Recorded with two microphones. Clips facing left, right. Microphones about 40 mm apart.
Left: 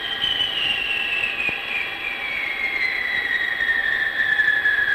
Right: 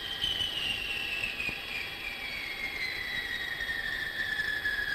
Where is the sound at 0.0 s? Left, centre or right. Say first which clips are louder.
Left 10 dB; left.